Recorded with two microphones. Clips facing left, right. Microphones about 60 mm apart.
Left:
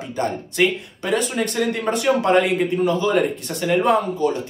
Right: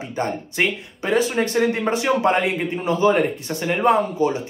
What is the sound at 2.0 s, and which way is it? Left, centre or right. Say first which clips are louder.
Speech: left 3 dB; centre.